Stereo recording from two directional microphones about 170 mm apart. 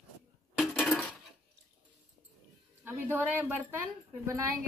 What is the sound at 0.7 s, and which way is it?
Dishes, 10° left (ahead or behind).